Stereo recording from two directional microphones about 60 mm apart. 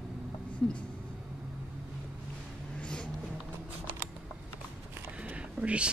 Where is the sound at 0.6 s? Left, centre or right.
Centre.